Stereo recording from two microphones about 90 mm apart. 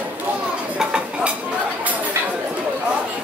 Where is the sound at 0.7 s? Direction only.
10° right (ahead or behind).